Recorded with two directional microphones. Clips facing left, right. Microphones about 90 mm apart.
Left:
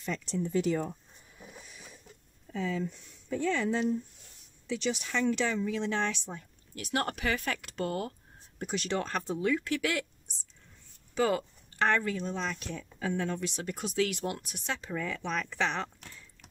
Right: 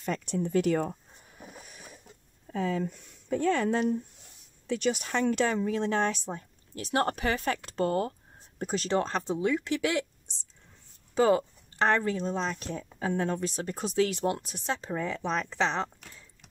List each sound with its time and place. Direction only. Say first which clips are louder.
0.0 s speech: right 3 dB; 55° right (ahead or behind)
1.4 s a sound: right 2 dB; 50° right (ahead or behind)
2.5 s speech: right 3 dB; 50° right (ahead or behind); by 16.3 s 25° right (ahead or behind)